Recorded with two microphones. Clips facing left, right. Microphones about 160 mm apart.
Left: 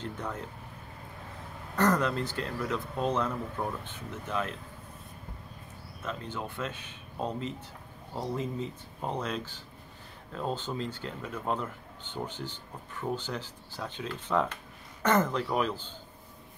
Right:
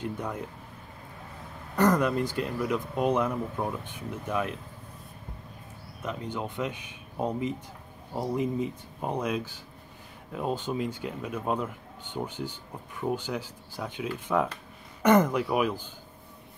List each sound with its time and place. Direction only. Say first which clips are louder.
0.0 s speech: right 3 dB; 15° right (ahead or behind)
1.8 s speech: right 3 dB; 15° right (ahead or behind)
6.0 s speech: right 3 dB; 15° right (ahead or behind)